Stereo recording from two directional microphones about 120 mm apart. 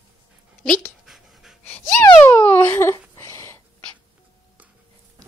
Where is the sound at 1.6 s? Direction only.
15° left (ahead or behind).